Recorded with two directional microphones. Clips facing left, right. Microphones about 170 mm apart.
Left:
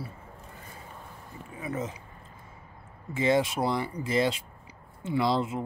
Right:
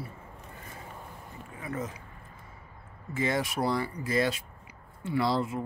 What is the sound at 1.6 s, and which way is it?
Speech, 20° left (ahead or behind).